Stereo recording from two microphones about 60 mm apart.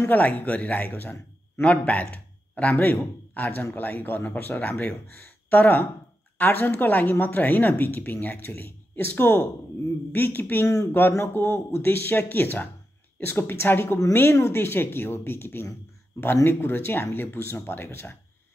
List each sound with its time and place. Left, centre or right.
0.1 s a man's voice: left